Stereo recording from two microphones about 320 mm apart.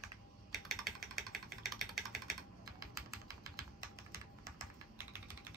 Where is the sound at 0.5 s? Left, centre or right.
Centre.